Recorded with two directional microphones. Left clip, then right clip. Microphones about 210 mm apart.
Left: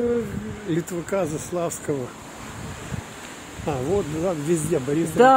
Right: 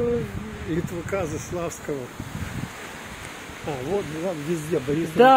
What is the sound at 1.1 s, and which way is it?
Speech, 50° left (ahead or behind).